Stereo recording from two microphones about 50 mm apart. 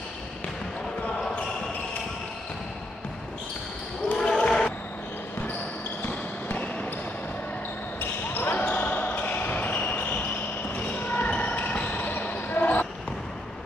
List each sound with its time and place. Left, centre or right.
4.1 s basketball bounce: centre
6.0 s basketball bounce: left
8.0 s basketball bounce: left